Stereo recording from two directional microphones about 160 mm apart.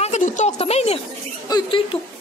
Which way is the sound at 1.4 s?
30° left (ahead or behind).